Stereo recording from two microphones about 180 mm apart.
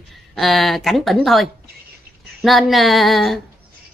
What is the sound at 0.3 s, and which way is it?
Speech, centre (ahead or behind).